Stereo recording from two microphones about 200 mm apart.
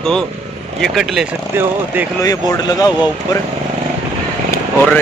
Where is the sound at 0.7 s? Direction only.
Centre (ahead or behind).